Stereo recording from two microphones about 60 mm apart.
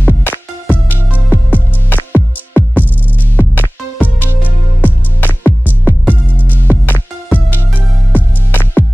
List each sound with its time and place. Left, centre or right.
0.0 s music: left